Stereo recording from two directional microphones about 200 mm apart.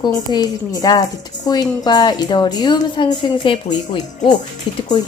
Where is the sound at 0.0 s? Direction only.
20° left (ahead or behind).